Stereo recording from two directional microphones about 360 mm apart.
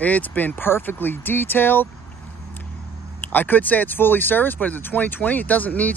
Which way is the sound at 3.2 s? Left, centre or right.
Centre.